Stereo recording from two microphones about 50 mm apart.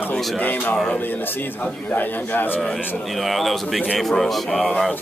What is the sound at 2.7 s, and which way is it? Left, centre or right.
Speech, centre.